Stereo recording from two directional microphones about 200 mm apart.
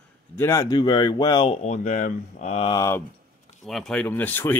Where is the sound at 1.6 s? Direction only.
35° left (ahead or behind).